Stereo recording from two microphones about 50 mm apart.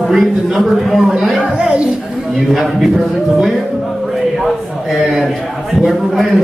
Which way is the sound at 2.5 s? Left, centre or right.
Centre.